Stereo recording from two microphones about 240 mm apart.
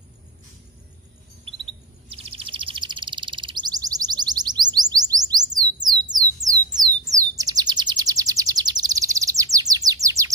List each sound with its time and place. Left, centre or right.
2.0 s bird: right